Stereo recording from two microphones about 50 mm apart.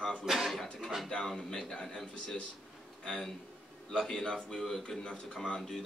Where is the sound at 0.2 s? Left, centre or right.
Centre.